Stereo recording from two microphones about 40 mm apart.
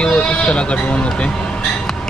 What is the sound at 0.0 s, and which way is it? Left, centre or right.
Speech, left.